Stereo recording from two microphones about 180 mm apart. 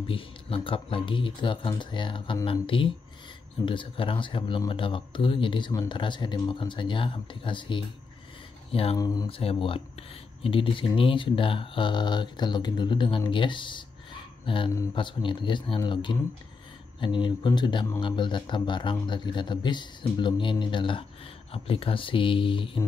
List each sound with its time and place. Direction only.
0.0 s speech: 30° left (ahead or behind)
8.9 s speech: 20° left (ahead or behind)
9.4 s speech: 30° left (ahead or behind)